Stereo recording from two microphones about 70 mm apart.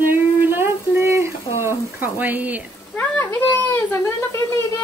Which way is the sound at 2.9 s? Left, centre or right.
Left.